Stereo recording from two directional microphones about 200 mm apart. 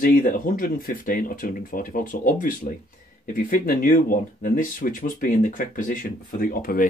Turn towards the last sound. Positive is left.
turn(degrees=45)  # may be behind; listen again after turning